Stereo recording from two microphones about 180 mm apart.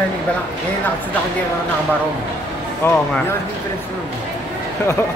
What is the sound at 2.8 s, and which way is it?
Speech, 10° left (ahead or behind).